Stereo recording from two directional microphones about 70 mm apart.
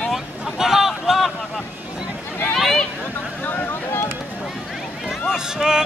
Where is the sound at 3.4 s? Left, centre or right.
Left.